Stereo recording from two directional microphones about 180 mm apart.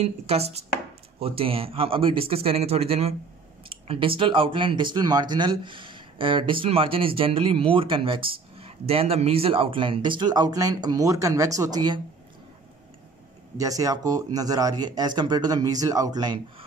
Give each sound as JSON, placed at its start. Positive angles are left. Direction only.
{"t": 0.0, "sound": "a man's voice", "side_deg": -35}
{"t": 13.6, "sound": "speech", "side_deg": -20}